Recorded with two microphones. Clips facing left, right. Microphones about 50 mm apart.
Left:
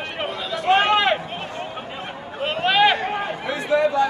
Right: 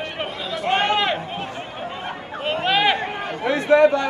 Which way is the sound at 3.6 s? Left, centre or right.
Right.